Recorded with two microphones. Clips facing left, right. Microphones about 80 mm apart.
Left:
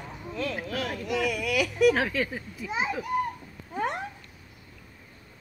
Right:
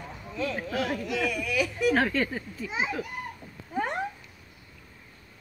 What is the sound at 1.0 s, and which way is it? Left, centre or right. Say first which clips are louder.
Speech: left 1 dB; left.